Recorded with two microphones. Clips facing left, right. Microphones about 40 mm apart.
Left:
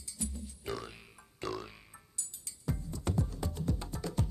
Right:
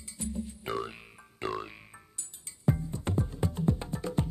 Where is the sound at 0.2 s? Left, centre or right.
Right.